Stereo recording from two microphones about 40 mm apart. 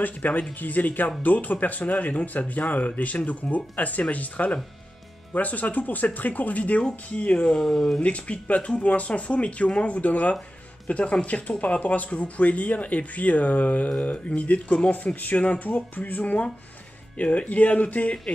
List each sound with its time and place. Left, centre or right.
0.0 s speech: left
7.6 s speech: centre
8.0 s speech: left